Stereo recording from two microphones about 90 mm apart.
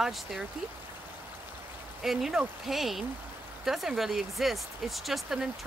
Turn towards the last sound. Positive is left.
turn(degrees=-5)  # may be behind; listen again after turning